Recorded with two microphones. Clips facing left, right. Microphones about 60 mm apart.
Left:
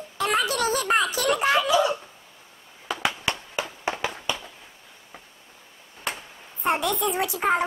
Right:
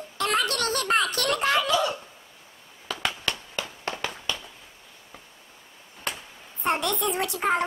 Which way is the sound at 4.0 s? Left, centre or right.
Centre.